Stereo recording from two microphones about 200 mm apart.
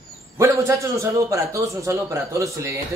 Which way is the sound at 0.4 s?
15° right (ahead or behind).